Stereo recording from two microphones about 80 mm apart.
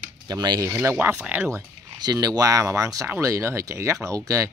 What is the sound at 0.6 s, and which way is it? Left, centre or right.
Speech, right.